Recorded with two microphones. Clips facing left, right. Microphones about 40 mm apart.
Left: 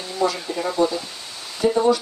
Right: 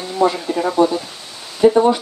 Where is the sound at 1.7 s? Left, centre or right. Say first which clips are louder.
Right 4 dB; right.